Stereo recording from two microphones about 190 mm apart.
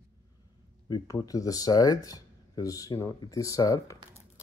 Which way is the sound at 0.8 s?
20° left (ahead or behind).